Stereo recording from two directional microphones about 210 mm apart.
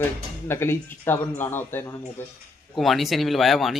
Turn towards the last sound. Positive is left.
turn(degrees=0)  # may be behind; listen again after turning